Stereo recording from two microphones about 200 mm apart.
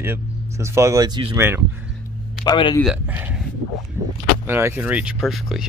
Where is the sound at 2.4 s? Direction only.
20° left (ahead or behind).